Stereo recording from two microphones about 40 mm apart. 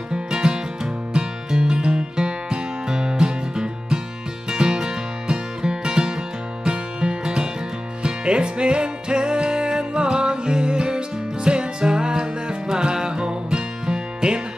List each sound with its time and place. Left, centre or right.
0.1 s music: centre